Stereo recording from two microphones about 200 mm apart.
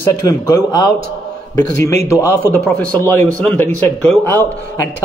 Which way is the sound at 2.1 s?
15° left (ahead or behind).